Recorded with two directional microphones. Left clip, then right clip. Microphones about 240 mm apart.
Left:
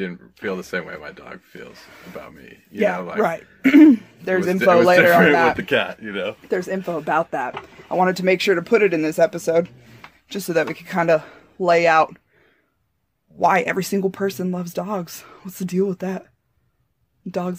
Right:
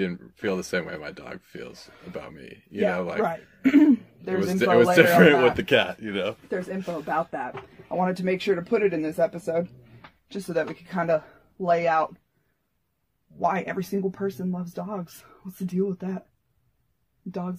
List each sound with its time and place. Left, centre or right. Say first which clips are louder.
0.4 s speech: left 1 dB; centre
3.2 s speech: left 6 dB; left
4.9 s speech: left 3 dB; centre
6.5 s speech: left 7 dB; left
13.4 s speech: left 8 dB; left
17.3 s speech: left 8 dB; left